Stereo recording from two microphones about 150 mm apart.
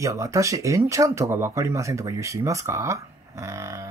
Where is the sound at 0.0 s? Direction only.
20° right (ahead or behind).